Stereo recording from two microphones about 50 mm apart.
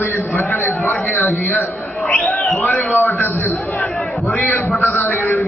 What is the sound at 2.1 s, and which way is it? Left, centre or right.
Bird, centre.